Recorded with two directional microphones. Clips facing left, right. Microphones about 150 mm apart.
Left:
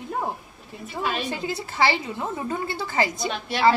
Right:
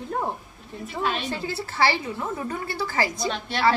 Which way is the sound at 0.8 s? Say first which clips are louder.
Even; 5° left (ahead or behind).